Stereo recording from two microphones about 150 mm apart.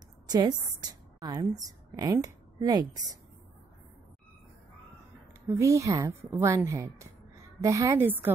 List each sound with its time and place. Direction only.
0.3 s a woman's voice: 30° right (ahead or behind)
5.5 s a woman's voice: 20° right (ahead or behind)